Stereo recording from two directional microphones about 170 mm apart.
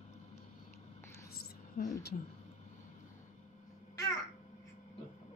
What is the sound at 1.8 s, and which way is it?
Speech, 55° left (ahead or behind).